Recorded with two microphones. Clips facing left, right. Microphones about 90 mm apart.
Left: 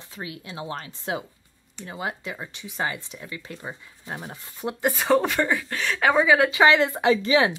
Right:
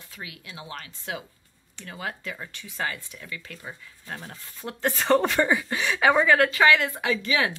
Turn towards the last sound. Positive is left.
turn(degrees=25)  # may be behind; listen again after turning